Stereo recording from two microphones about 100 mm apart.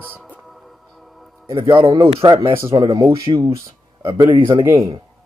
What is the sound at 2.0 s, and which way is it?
Speech, 75° right (ahead or behind).